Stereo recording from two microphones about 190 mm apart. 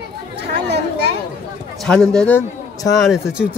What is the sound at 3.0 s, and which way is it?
Speech, 5° right (ahead or behind).